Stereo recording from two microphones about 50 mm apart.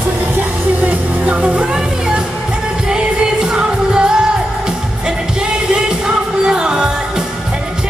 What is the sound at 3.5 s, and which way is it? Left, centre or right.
Music, centre.